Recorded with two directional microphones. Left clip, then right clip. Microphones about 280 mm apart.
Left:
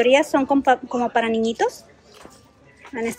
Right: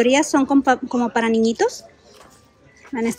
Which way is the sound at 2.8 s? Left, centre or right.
Centre.